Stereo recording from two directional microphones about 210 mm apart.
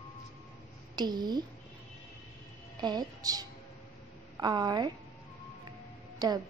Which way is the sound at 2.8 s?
20° right (ahead or behind).